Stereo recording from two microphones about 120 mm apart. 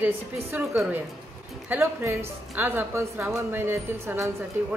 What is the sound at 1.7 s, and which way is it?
A woman's voice, 20° right (ahead or behind).